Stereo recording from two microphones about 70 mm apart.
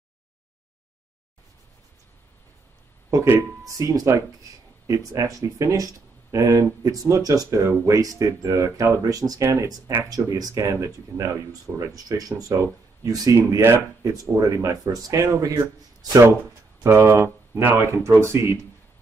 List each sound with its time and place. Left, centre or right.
3.6 s speech: right
9.4 s speech: right
9.7 s speech: right
13.6 s speech: right
14.1 s speech: right
16.8 s speech: right